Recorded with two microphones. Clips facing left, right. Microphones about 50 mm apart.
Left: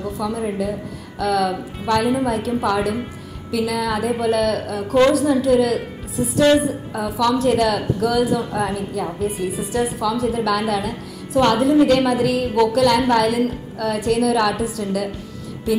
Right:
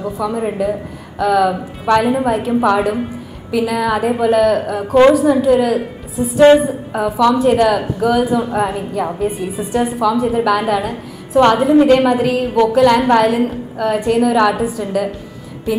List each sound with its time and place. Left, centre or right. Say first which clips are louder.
0.0 s a woman's voice: right 4 dB; centre
8.7 s a woman's voice: right 4 dB; right
9.4 s a woman's voice: right 3 dB; centre
11.3 s a woman's voice: right 5 dB; right